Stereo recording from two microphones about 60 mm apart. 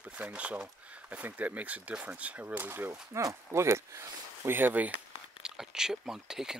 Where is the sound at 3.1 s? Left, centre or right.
Right.